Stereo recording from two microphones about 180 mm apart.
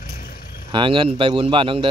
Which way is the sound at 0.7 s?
25° right (ahead or behind).